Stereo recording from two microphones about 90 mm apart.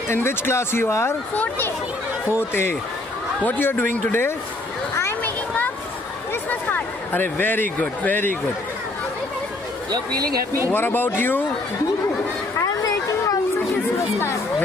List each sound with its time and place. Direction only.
0.1 s speech: 25° left (ahead or behind)
6.5 s a man's voice: 20° left (ahead or behind)
9.8 s speech: 45° right (ahead or behind)
10.7 s speech: 20° left (ahead or behind)
12.6 s a sound: 40° left (ahead or behind)